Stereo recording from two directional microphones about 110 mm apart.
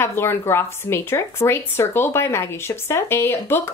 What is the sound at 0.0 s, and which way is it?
Speech, 20° left (ahead or behind).